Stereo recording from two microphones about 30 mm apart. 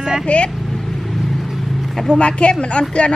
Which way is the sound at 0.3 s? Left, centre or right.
Left.